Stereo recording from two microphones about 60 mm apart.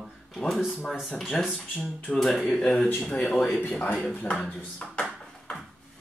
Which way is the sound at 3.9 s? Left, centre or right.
Centre.